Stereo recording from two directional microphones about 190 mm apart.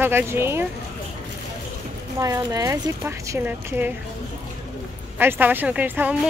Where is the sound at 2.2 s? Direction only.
15° right (ahead or behind).